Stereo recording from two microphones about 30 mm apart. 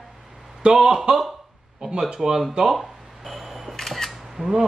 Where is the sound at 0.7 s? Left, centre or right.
Centre.